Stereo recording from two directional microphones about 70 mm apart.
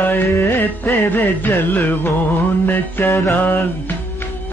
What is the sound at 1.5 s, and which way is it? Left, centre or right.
Mantra, left.